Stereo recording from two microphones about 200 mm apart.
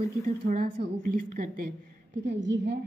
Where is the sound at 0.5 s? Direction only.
45° right (ahead or behind).